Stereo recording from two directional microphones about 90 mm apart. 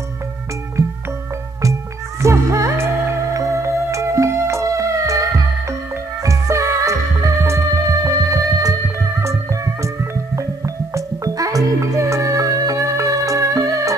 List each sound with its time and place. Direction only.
2.2 s music: 35° right (ahead or behind)